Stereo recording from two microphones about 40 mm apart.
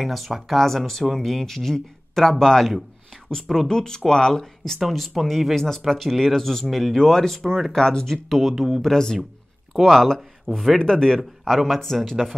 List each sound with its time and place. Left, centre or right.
0.0 s speech: centre
4.7 s speech: centre
8.3 s speech: centre
8.8 s speech: centre
10.8 s speech: centre
11.4 s speech: centre